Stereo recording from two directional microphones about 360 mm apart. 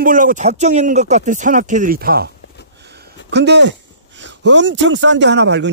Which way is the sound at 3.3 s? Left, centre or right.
Right.